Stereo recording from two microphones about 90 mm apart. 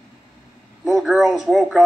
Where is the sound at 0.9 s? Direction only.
Centre (ahead or behind).